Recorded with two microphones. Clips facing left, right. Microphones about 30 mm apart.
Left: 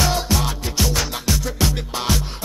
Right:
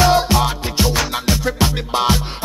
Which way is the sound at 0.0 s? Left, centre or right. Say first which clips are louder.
Right 7 dB; right.